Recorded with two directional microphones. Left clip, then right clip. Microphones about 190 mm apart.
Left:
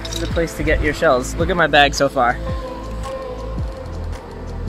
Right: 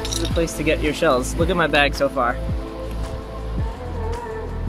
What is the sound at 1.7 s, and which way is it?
Speech, 20° left (ahead or behind).